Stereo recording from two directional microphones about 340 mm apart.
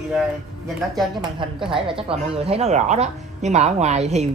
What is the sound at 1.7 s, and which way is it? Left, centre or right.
A woman's voice, centre.